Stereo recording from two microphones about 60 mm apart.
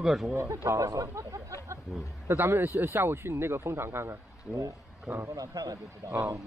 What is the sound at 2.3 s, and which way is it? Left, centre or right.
A man's voice, right.